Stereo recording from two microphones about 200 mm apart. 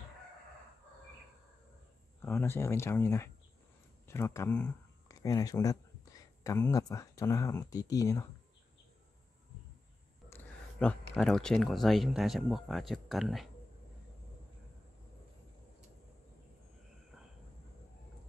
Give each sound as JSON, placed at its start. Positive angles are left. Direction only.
{"t": 2.2, "sound": "speech", "side_deg": 10}
{"t": 10.3, "sound": "speech", "side_deg": 5}